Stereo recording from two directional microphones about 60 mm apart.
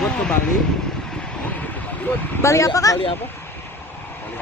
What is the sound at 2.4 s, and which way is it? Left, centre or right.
Speech, left.